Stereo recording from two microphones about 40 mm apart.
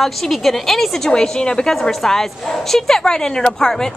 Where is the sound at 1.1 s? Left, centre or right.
Left.